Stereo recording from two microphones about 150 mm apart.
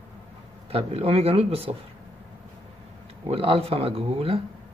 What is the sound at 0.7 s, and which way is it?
A man's voice, 40° right (ahead or behind).